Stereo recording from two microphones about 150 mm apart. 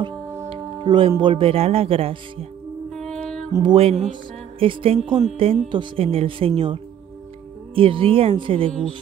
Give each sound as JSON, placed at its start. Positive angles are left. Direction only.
{"t": 0.5, "sound": "music", "side_deg": -35}
{"t": 2.9, "sound": "music", "side_deg": 5}
{"t": 3.6, "sound": "music", "side_deg": -40}